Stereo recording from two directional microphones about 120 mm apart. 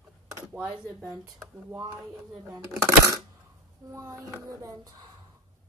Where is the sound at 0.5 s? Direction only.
5° right (ahead or behind).